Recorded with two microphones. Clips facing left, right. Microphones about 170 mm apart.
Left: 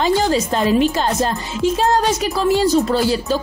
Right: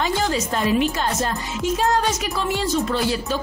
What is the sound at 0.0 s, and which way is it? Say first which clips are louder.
A woman's voice: left 6 dB; 30° left (ahead or behind).